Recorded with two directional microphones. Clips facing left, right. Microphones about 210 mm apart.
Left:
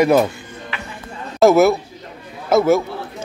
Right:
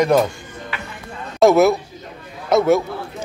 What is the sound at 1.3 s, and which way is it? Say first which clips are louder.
A man's voice: left 1 dB; centre (ahead or behind).